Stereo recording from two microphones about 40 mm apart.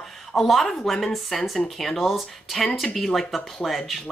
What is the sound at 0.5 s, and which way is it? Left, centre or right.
A woman's voice, centre.